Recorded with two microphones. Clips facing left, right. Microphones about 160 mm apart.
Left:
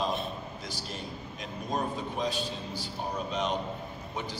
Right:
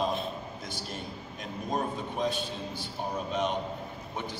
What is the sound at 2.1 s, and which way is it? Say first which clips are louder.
Speech: right 2 dB; 55° right (ahead or behind).